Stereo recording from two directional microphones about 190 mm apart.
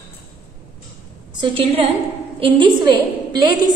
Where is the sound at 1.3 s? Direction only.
25° right (ahead or behind).